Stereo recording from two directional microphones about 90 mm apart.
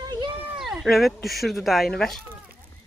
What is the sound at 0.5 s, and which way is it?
Speech, 5° right (ahead or behind).